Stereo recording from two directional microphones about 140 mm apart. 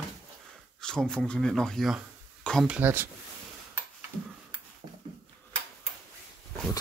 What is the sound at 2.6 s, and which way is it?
Speech, 15° right (ahead or behind).